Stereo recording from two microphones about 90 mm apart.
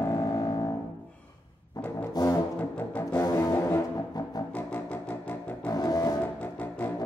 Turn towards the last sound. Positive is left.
turn(degrees=45)  # may be behind; listen again after turning